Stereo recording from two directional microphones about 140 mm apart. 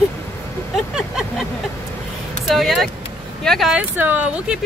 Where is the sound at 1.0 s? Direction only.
5° right (ahead or behind).